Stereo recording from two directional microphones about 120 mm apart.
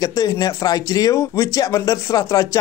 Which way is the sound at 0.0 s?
30° left (ahead or behind).